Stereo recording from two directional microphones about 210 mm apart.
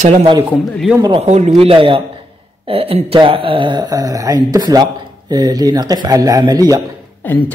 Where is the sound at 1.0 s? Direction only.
25° right (ahead or behind).